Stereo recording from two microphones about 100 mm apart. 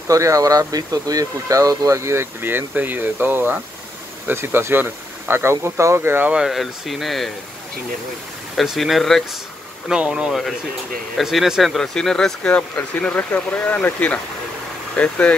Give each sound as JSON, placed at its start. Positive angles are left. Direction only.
{"t": 0.1, "sound": "speech", "side_deg": -35}
{"t": 6.3, "sound": "speech", "side_deg": -5}
{"t": 8.5, "sound": "speech", "side_deg": 0}